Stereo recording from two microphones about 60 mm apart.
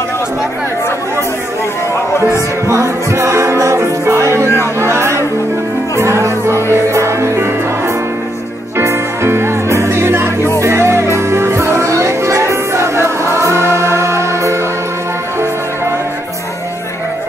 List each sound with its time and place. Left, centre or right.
2.2 s music: right
8.7 s music: right